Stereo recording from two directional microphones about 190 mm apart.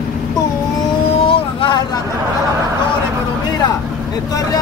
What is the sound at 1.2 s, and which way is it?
Boat, 30° left (ahead or behind).